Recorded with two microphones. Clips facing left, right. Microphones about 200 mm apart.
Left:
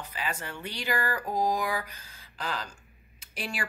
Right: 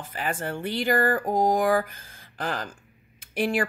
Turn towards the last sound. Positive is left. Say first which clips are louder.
# right 12 dB
turn(degrees=-50)  # may be behind; listen again after turning